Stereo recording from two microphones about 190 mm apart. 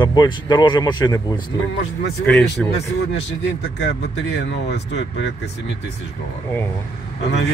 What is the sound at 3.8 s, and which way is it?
Speech, 65° left (ahead or behind).